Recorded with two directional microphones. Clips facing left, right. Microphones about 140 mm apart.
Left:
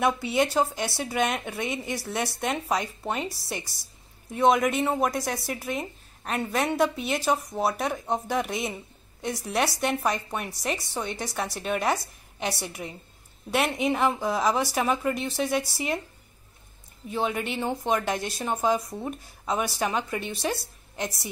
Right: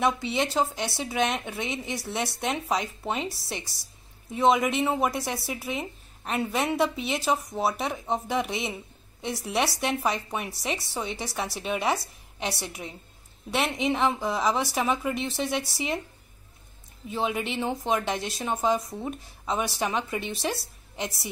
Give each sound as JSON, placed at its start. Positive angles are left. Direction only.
{"t": 0.0, "sound": "speech", "side_deg": 0}
{"t": 17.1, "sound": "speech", "side_deg": 0}